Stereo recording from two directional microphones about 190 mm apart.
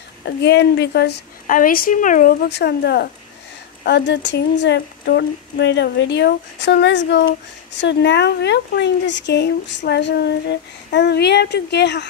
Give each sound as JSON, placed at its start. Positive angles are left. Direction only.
{"t": 0.2, "sound": "speech", "side_deg": 65}